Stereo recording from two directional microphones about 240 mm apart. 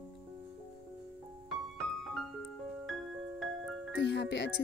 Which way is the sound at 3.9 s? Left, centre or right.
Left.